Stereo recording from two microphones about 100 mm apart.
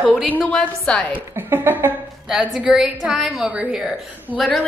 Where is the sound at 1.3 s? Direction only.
20° right (ahead or behind).